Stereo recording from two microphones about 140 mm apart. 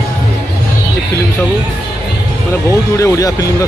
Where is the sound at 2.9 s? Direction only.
25° left (ahead or behind).